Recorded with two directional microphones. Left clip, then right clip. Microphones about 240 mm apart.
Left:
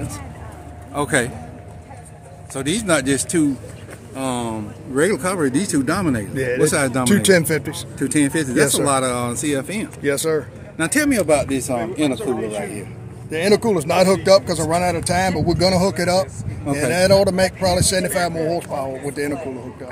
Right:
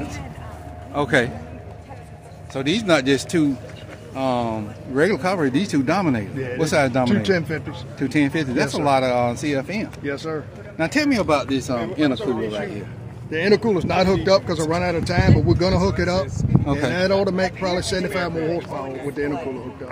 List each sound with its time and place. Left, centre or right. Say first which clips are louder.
0.9 s speech: right 1 dB; centre
2.5 s speech: right 1 dB; centre
6.3 s speech: left 7 dB; left
6.6 s speech: right 1 dB; centre
7.1 s speech: left 6 dB; left
8.0 s speech: left 2 dB; centre
10.0 s speech: left 10 dB; left
10.8 s speech: left 2 dB; centre
13.3 s speech: left 1 dB; centre